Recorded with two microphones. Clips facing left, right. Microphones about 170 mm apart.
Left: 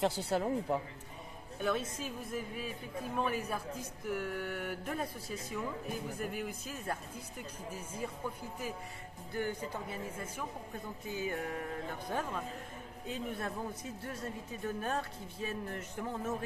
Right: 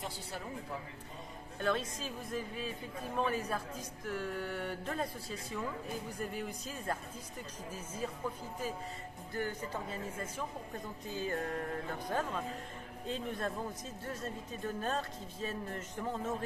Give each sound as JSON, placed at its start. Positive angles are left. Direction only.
{"t": 0.0, "sound": "speech", "side_deg": 75}
{"t": 1.6, "sound": "speech", "side_deg": 10}
{"t": 9.3, "sound": "speech", "side_deg": 10}